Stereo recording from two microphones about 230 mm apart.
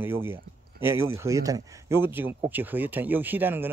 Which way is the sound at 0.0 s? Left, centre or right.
Centre.